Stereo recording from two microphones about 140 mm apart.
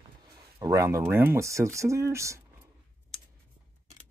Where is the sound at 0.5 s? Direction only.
25° right (ahead or behind).